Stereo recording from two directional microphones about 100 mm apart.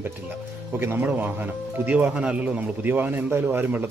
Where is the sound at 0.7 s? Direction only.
20° right (ahead or behind).